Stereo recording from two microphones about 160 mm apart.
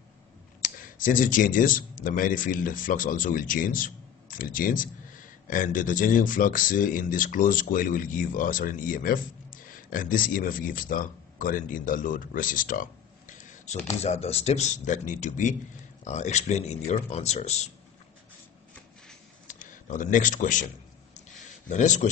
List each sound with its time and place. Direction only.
0.6 s speech: 60° left (ahead or behind)
14.0 s speech: 40° left (ahead or behind)
19.4 s a sound: 55° left (ahead or behind)
21.6 s speech: 50° left (ahead or behind)